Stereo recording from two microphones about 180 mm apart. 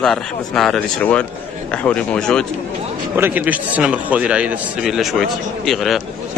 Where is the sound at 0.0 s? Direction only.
5° left (ahead or behind).